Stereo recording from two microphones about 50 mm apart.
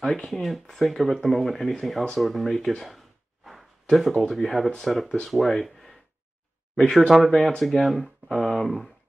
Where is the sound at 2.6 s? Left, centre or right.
Centre.